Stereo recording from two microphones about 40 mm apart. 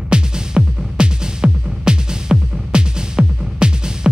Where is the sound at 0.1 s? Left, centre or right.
Right.